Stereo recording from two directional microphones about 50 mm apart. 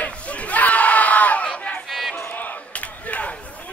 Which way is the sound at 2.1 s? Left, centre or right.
Left.